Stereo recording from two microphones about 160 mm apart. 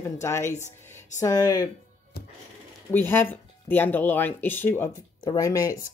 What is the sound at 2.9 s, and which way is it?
Speech, 10° left (ahead or behind).